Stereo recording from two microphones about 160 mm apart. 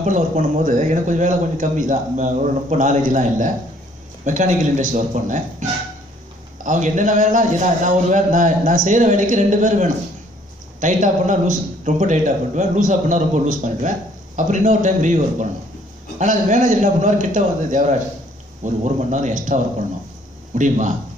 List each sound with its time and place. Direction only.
0.0 s a man's voice: 50° right (ahead or behind)